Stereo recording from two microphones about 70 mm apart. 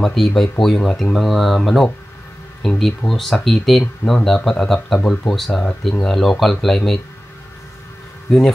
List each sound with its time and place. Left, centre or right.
0.0 s speech: centre
5.9 s speech: centre
8.3 s speech: centre